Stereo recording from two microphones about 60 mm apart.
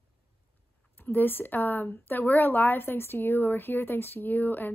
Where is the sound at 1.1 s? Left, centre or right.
Left.